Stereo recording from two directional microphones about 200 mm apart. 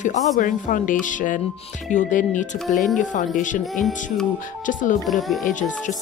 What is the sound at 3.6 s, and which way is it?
Speech, centre (ahead or behind).